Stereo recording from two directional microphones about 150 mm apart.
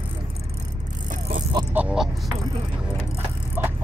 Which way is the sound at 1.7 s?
10° right (ahead or behind).